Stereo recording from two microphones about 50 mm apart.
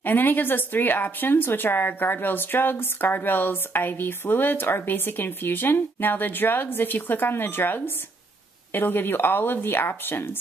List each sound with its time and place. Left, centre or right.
0.0 s speech: left